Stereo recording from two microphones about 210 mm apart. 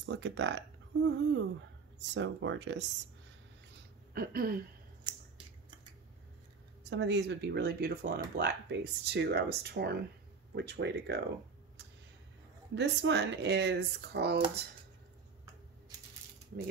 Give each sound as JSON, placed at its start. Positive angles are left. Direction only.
{"t": 0.0, "sound": "speech", "side_deg": -60}
{"t": 4.1, "sound": "speech", "side_deg": -45}
{"t": 6.8, "sound": "speech", "side_deg": -55}
{"t": 12.7, "sound": "speech", "side_deg": -55}